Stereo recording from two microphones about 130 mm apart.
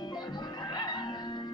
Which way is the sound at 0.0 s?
35° left (ahead or behind).